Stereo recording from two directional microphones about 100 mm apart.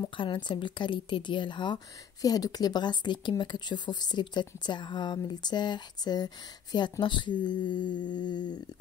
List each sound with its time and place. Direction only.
0.2 s speech: 50° left (ahead or behind)
2.2 s speech: 40° left (ahead or behind)